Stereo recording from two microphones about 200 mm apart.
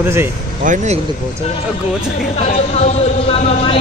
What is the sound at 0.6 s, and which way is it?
Speech, 40° right (ahead or behind).